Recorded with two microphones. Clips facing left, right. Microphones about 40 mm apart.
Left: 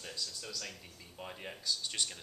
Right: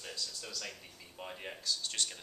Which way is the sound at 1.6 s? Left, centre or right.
Centre.